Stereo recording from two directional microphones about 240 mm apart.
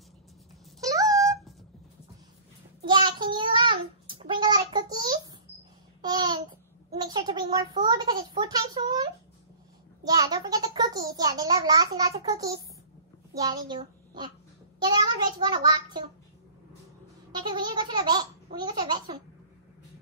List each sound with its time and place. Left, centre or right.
0.7 s cat: centre
1.0 s cat: centre
2.8 s child singing: centre
6.0 s babbling: centre
7.0 s a child's voice: centre
14.8 s child singing: centre
17.3 s a child's voice: centre